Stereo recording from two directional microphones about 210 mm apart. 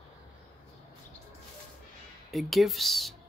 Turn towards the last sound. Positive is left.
turn(degrees=0)  # may be behind; listen again after turning